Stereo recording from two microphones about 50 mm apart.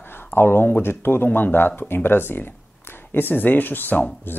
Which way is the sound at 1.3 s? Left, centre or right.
Left.